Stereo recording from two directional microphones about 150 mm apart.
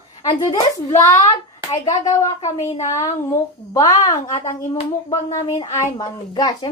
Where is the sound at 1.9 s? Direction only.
25° left (ahead or behind).